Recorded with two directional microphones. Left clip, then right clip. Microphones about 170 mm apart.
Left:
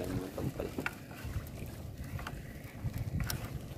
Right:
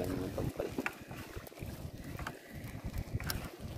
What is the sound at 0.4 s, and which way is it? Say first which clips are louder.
Boat: even; 5° left (ahead or behind).